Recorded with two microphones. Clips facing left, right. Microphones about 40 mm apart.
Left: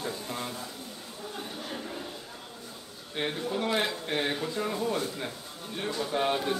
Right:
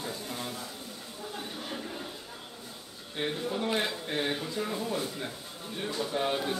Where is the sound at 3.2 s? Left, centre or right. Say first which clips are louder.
Left 1 dB; centre.